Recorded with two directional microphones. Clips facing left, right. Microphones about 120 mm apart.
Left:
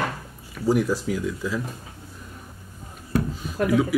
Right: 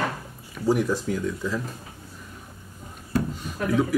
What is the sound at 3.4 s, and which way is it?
Speech, 5° left (ahead or behind).